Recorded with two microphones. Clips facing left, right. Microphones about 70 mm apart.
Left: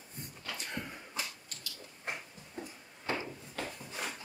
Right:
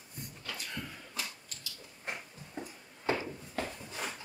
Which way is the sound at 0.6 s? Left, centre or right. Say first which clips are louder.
Left 1 dB; left.